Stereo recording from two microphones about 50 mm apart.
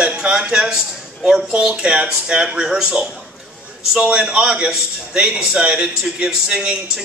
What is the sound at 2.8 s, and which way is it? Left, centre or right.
A man's voice, right.